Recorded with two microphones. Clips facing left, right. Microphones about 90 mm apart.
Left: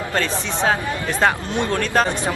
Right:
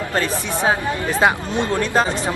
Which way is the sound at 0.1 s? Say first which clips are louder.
Right 1 dB; 15° right (ahead or behind).